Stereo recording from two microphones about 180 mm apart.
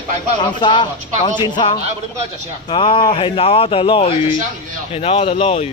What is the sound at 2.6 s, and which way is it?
Speech, 25° left (ahead or behind).